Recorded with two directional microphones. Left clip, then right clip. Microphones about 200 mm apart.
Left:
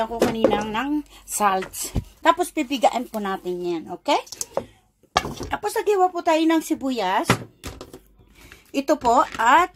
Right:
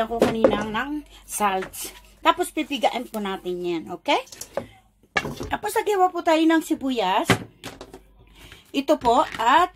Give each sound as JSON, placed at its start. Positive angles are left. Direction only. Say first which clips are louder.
{"t": 0.0, "sound": "speech", "louder": "right 1 dB", "side_deg": 10}
{"t": 5.5, "sound": "speech", "louder": "left 1 dB", "side_deg": 0}
{"t": 8.7, "sound": "speech", "louder": "left 1 dB", "side_deg": 5}